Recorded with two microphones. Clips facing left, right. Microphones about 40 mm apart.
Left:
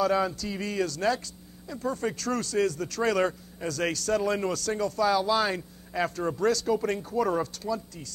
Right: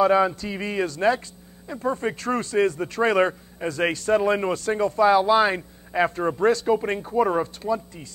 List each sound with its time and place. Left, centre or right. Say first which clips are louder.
0.0 s a man's voice: right 6 dB; right